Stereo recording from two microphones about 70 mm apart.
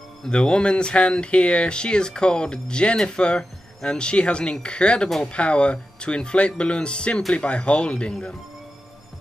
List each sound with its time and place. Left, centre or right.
0.2 s speech: centre